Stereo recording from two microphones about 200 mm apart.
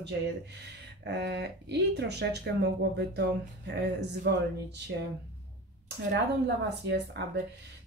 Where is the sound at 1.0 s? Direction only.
60° right (ahead or behind).